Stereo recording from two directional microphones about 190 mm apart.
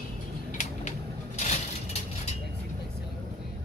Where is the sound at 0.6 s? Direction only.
40° left (ahead or behind).